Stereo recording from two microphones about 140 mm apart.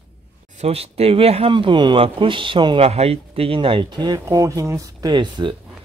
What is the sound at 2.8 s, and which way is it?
Speech, 45° right (ahead or behind).